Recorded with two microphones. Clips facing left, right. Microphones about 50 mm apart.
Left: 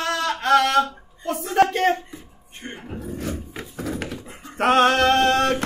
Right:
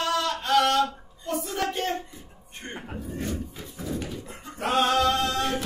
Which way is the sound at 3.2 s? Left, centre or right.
Left.